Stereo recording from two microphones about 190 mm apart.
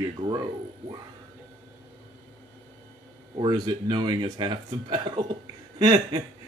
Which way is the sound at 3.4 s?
25° right (ahead or behind).